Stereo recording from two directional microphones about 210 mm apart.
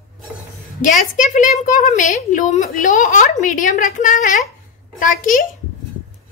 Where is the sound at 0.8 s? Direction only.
40° left (ahead or behind).